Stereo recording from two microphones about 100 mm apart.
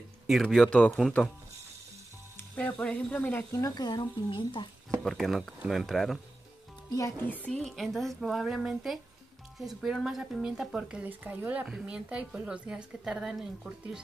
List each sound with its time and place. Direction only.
0.3 s a woman's voice: centre (ahead or behind)
0.7 s speech: 10° left (ahead or behind)
2.5 s speech: 10° left (ahead or behind)
3.5 s speech: 40° left (ahead or behind)
5.0 s a woman's voice: centre (ahead or behind)
6.9 s speech: 35° left (ahead or behind)
7.2 s a woman's voice: 15° left (ahead or behind); by 14.0 s 5° right (ahead or behind)